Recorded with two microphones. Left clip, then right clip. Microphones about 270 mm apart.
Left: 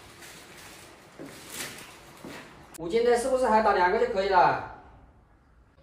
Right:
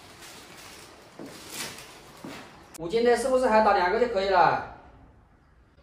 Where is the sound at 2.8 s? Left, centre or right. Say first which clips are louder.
Right 1 dB; centre.